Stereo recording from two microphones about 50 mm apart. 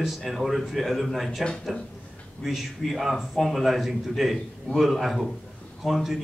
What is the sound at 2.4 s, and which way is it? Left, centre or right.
A man's voice, centre.